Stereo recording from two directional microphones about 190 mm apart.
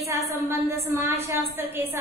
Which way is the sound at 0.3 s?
15° right (ahead or behind).